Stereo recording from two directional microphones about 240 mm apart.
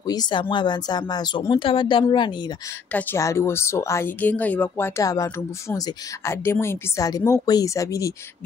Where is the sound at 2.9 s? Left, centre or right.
Centre.